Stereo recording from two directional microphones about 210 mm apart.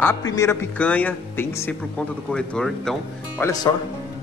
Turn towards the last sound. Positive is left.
turn(degrees=15)  # may be behind; listen again after turning